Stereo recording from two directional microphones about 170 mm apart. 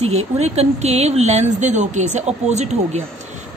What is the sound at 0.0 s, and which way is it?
A woman's voice, 40° right (ahead or behind).